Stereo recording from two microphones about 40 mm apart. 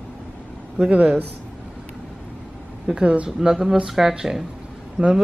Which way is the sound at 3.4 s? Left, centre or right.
Centre.